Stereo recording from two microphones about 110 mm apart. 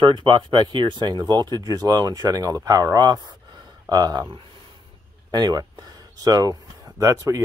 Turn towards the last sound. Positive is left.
turn(degrees=-30)  # may be behind; listen again after turning